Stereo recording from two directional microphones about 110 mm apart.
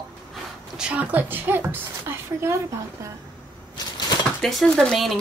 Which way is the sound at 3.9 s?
40° left (ahead or behind).